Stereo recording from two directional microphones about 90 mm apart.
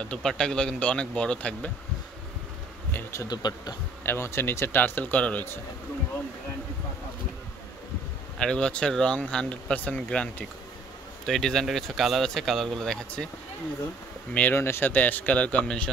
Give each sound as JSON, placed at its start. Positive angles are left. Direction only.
{"t": 0.0, "sound": "speech", "side_deg": 10}
{"t": 2.9, "sound": "speech", "side_deg": 20}
{"t": 3.3, "sound": "speech", "side_deg": 50}
{"t": 4.0, "sound": "speech", "side_deg": 30}
{"t": 8.4, "sound": "speech", "side_deg": 10}
{"t": 14.3, "sound": "speech", "side_deg": 20}